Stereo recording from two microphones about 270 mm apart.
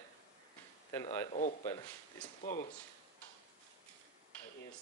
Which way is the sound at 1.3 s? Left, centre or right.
Left.